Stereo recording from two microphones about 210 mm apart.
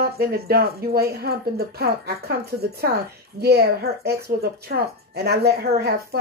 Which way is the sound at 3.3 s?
50° right (ahead or behind).